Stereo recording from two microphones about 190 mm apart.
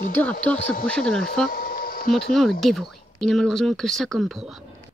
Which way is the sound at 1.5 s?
50° left (ahead or behind).